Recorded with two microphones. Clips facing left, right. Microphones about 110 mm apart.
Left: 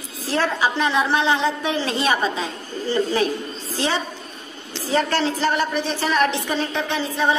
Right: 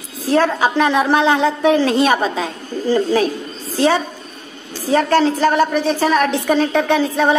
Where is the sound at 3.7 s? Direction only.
45° right (ahead or behind).